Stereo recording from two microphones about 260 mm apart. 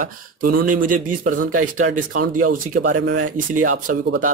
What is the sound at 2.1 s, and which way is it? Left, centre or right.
Speech, right.